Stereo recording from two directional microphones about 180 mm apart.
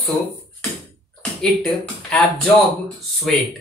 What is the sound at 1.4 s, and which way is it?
Speech, 5° left (ahead or behind).